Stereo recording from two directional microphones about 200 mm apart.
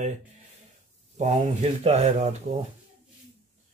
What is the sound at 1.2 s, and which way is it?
Speech, 35° right (ahead or behind).